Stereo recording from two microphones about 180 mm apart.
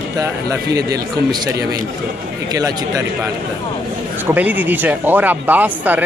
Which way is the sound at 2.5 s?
20° right (ahead or behind).